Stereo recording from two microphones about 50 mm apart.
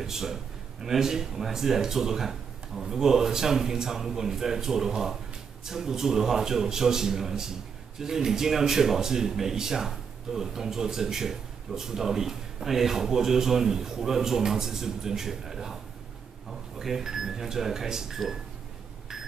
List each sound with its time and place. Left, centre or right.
0.0 s speech: centre